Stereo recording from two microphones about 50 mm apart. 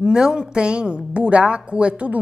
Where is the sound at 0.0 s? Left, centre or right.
Centre.